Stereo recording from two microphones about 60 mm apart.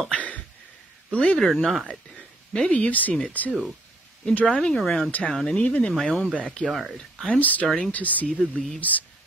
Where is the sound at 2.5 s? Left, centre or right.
Centre.